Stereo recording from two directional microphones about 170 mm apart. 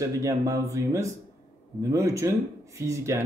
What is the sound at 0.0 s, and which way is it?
Speech, 20° right (ahead or behind).